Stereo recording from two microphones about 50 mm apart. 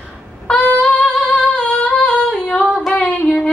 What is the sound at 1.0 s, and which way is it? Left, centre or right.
Singing, left.